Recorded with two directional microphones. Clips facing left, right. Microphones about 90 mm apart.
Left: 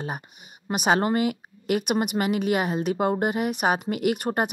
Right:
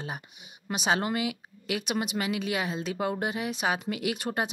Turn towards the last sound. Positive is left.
turn(degrees=50)  # may be behind; listen again after turning